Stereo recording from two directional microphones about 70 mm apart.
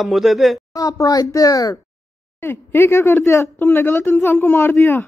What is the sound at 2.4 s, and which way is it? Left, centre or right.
Speech, left.